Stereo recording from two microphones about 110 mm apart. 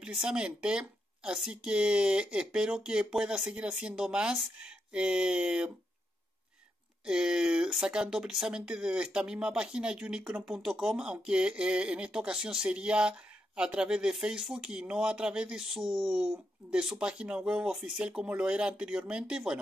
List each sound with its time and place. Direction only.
0.0 s speech: 10° right (ahead or behind)
7.1 s speech: 5° right (ahead or behind)